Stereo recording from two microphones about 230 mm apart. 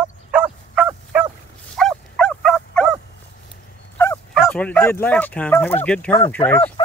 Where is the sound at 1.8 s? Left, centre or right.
Centre.